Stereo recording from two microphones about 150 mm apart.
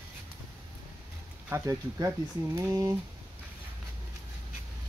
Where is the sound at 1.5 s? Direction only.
20° right (ahead or behind).